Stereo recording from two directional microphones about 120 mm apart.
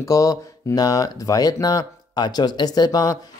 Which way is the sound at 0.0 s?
30° left (ahead or behind).